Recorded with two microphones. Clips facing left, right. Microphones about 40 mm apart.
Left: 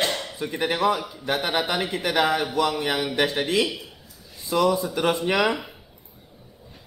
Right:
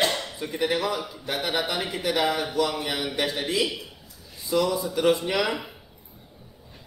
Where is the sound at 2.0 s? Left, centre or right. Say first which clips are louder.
Left 2 dB; left.